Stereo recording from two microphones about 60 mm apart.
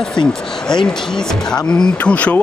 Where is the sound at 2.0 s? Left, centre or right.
Left.